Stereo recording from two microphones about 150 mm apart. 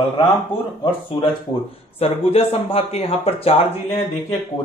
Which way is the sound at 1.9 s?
40° left (ahead or behind).